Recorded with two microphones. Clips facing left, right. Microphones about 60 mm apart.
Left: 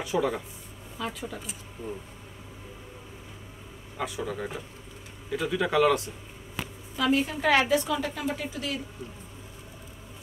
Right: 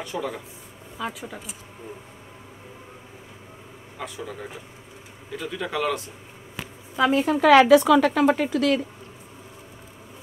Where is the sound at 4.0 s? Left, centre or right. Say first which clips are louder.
Left 3 dB; centre.